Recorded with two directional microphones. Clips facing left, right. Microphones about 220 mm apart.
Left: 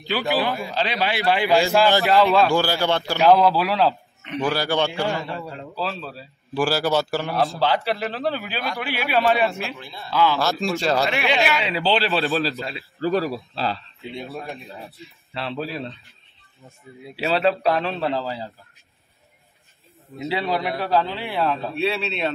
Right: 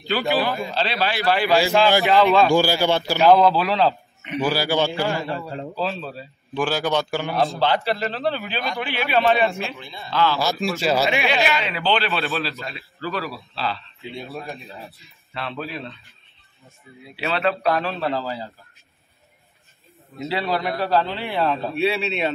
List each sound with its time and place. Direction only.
0.5 s a man's voice: centre (ahead or behind)
0.7 s speech: 15° left (ahead or behind)
1.5 s a man's voice: centre (ahead or behind)
2.5 s a man's voice: 10° right (ahead or behind); by 3.9 s 10° left (ahead or behind)
4.3 s a man's voice: 5° right (ahead or behind); by 10.4 s 10° left (ahead or behind)
10.4 s a man's voice: centre (ahead or behind)
11.7 s a man's voice: 30° left (ahead or behind)
13.6 s a man's voice: 40° left (ahead or behind)
15.3 s a man's voice: 30° left (ahead or behind)
20.2 s a man's voice: 15° left (ahead or behind); by 22.3 s 5° right (ahead or behind)